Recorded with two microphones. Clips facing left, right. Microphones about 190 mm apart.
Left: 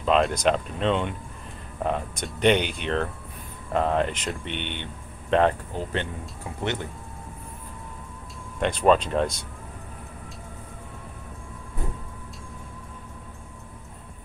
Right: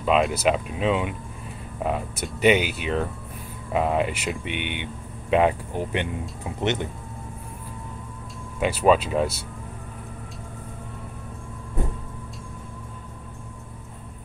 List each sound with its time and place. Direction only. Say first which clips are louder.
0.0 s speech: right 1 dB; 5° right (ahead or behind)
8.5 s speech: right 1 dB; 5° right (ahead or behind)